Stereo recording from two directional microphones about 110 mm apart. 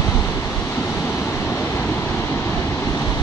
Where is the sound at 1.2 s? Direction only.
20° left (ahead or behind).